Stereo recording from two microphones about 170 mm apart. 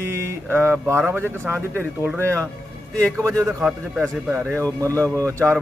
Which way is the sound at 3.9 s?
Centre (ahead or behind).